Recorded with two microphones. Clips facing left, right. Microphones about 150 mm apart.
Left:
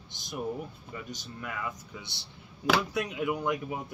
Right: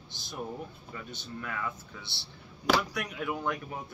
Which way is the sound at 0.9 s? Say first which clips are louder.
Even; 10° left (ahead or behind).